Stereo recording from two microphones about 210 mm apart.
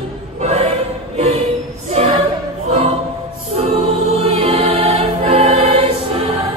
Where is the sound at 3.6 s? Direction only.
30° right (ahead or behind).